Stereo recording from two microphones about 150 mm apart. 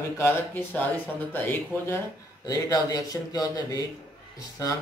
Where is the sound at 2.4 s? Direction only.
25° left (ahead or behind).